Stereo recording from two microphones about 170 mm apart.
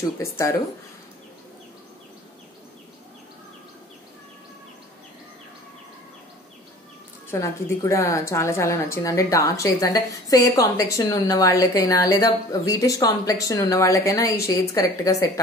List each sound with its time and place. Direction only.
0.2 s speech: 15° left (ahead or behind)
7.2 s a woman's voice: 15° left (ahead or behind)